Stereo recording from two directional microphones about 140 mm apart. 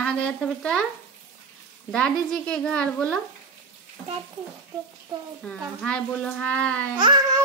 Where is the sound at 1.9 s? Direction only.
5° left (ahead or behind).